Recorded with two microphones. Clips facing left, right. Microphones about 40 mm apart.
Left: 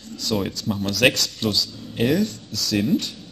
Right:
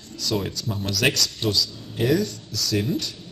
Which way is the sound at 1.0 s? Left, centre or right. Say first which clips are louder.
Left 4 dB; left.